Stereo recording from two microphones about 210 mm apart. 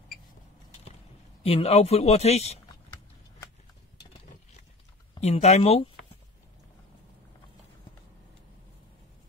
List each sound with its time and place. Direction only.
1.4 s speech: 30° left (ahead or behind)
5.2 s speech: 30° left (ahead or behind)